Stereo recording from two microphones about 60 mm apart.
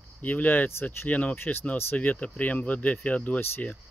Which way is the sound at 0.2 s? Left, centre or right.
Left.